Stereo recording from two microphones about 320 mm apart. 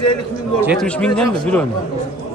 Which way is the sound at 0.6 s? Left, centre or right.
Centre.